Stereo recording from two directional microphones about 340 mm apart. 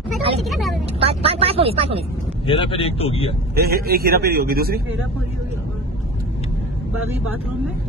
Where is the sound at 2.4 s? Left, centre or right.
Centre.